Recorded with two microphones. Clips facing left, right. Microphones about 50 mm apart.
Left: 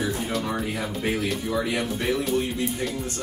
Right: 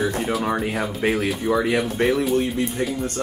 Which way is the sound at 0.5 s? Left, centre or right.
Right.